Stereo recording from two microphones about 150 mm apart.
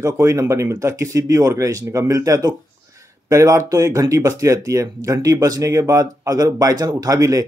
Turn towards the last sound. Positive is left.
turn(degrees=-20)  # may be behind; listen again after turning